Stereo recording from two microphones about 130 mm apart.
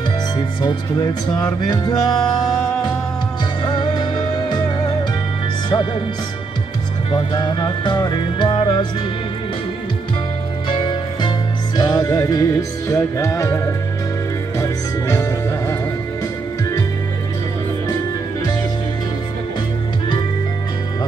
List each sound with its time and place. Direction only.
0.4 s music: 30° left (ahead or behind)
2.4 s music: centre (ahead or behind)
3.6 s music: 35° left (ahead or behind)
7.1 s music: 35° left (ahead or behind)
10.7 s music: 35° left (ahead or behind)